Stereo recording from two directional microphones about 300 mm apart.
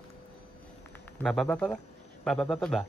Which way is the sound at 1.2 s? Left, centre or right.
Centre.